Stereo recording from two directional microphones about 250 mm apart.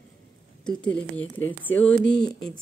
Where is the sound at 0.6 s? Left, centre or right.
Centre.